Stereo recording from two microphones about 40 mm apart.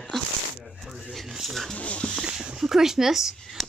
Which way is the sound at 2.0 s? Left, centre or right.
Left.